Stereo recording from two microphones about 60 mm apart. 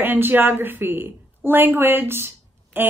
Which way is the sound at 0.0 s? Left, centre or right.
Right.